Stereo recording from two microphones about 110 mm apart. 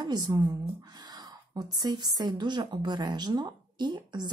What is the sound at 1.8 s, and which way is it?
Speech, 35° right (ahead or behind).